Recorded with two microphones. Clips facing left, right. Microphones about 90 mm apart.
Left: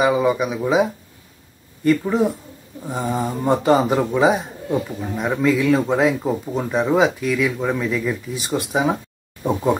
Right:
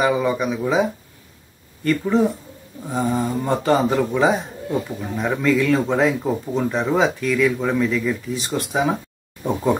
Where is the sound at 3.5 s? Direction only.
15° left (ahead or behind).